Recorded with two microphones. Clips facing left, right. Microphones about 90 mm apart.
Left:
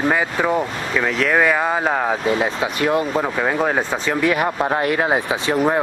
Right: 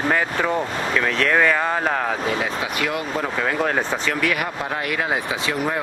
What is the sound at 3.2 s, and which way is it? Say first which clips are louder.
Speech: left 3 dB; 20° left (ahead or behind).